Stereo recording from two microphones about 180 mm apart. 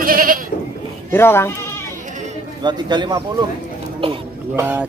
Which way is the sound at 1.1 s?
15° left (ahead or behind).